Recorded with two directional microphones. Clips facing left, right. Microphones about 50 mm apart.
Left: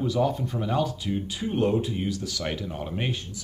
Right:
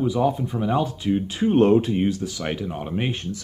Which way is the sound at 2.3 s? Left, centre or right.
Right.